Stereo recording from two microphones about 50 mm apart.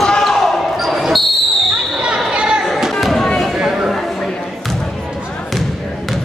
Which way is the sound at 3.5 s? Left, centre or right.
Centre.